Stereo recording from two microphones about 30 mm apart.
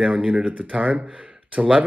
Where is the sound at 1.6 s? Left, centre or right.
Right.